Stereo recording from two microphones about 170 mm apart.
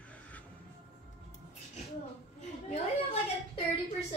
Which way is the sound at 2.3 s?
40° left (ahead or behind).